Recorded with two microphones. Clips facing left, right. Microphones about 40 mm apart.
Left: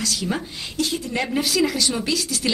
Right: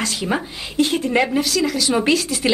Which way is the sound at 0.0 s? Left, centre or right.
Right.